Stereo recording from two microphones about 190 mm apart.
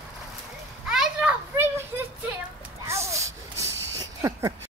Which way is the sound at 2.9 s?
15° right (ahead or behind).